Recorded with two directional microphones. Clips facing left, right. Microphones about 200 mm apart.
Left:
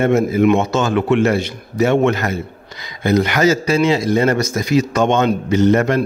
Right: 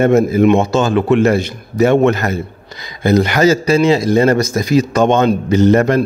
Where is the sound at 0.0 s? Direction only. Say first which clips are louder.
Right 3 dB; 40° right (ahead or behind).